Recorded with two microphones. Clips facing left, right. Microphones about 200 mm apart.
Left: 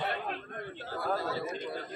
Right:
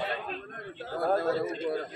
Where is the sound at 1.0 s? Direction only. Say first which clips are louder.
Right 6 dB; 50° right (ahead or behind).